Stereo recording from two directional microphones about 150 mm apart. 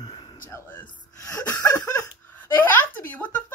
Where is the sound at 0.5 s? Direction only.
15° left (ahead or behind).